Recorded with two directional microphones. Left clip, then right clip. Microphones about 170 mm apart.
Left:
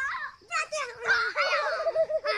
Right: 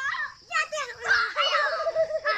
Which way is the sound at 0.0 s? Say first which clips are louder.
Right 2 dB; 5° left (ahead or behind).